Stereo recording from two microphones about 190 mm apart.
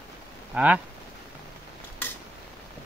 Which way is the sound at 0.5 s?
5° right (ahead or behind).